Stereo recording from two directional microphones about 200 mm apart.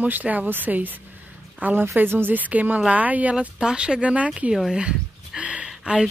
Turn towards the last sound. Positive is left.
turn(degrees=-5)  # may be behind; listen again after turning